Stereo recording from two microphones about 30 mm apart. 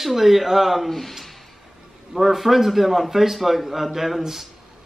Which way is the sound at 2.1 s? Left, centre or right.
Centre.